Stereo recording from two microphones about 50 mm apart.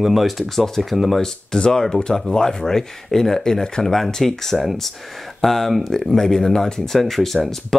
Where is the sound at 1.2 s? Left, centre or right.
Centre.